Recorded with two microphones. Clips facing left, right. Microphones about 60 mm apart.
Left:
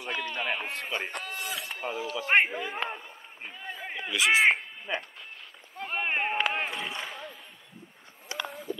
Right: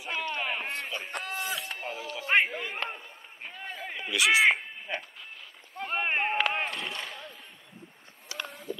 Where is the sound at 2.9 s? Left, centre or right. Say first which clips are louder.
Left 2 dB; centre.